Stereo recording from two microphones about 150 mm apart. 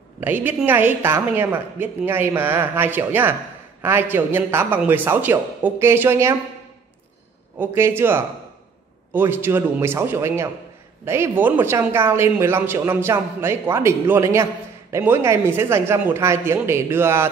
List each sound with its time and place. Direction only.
0.2 s a man's voice: 15° right (ahead or behind)
7.5 s a man's voice: 15° right (ahead or behind)